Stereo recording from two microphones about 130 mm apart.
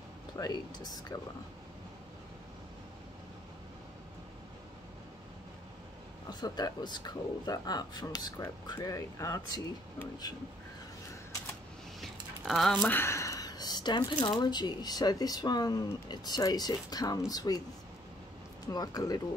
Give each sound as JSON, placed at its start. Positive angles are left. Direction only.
{"t": 0.4, "sound": "speech", "side_deg": 30}
{"t": 6.4, "sound": "speech", "side_deg": 30}
{"t": 12.0, "sound": "a sound", "side_deg": 0}
{"t": 12.8, "sound": "speech", "side_deg": 15}
{"t": 18.7, "sound": "speech", "side_deg": 30}